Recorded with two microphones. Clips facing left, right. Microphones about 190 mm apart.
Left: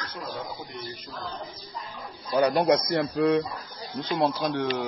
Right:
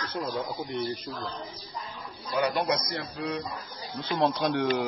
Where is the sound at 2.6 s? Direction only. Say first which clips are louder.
Left 7 dB; 50° left (ahead or behind).